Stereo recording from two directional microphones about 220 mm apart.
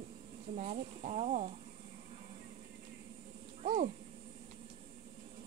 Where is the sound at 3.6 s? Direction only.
30° right (ahead or behind).